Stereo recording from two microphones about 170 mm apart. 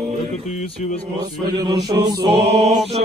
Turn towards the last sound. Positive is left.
turn(degrees=-75)  # may be behind; listen again after turning